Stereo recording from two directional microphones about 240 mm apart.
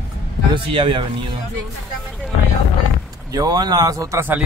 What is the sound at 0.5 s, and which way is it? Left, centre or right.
Speech, right.